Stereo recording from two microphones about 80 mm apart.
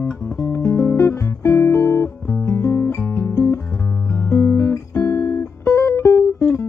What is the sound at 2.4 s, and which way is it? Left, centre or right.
Music, left.